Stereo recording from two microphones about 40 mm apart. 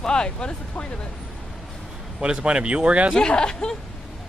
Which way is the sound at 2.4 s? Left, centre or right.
Right.